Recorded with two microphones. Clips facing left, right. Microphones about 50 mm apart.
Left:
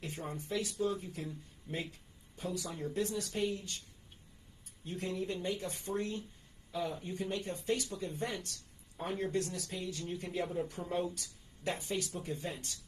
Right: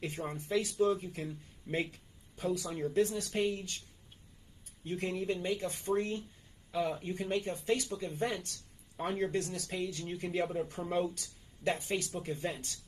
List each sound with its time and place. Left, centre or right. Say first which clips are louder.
0.0 s speech: right 3 dB; right
4.9 s speech: right 3 dB; right
10.8 s speech: right 3 dB; centre
11.1 s speech: even; right